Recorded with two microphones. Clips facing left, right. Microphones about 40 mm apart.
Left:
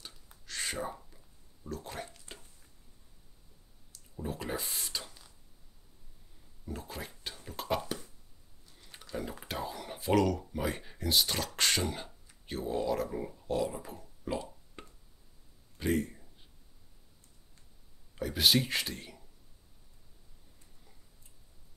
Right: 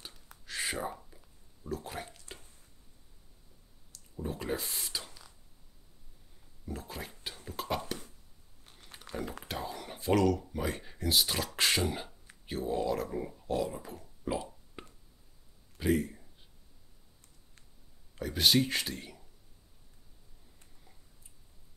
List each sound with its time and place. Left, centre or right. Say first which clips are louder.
0.5 s a sound: right 2 dB; centre
1.6 s speech: right 2 dB; centre
3.9 s speech: right 1 dB; centre
6.6 s speech: even; centre
8.6 s a sound: right 2 dB; right
9.7 s speech: right 1 dB; centre
13.7 s whispering: even; centre
15.8 s speech: right 2 dB; centre
18.1 s speech: even; centre